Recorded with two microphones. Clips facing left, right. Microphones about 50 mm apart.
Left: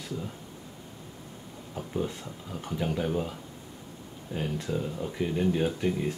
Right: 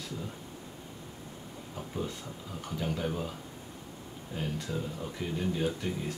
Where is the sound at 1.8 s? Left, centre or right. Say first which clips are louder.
Left 5 dB; centre.